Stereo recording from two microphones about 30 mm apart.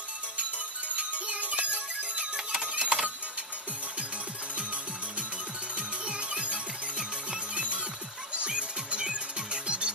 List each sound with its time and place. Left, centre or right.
0.4 s music: right
2.3 s music: right
2.7 s printer: right
5.8 s music: right